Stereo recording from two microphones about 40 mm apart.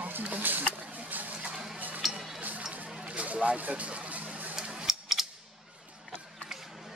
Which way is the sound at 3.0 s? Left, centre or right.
Right.